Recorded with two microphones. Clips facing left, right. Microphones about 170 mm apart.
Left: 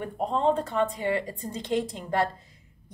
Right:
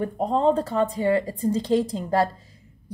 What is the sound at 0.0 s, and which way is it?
Speech, 40° right (ahead or behind).